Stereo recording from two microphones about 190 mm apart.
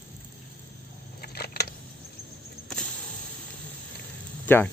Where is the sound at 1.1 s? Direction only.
55° left (ahead or behind).